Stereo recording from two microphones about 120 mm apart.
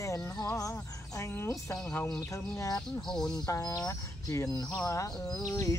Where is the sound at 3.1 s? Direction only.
5° left (ahead or behind).